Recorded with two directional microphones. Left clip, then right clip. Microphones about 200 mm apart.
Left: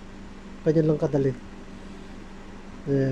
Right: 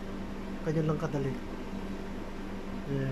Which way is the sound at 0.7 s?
20° left (ahead or behind).